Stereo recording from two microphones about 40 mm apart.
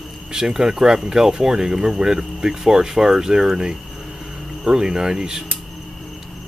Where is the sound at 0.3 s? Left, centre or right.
Centre.